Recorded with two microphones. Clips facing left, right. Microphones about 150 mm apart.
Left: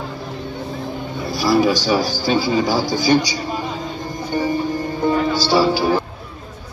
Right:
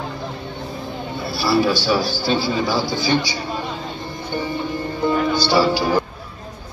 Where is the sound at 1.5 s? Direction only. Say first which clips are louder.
Left 2 dB; 45° left (ahead or behind).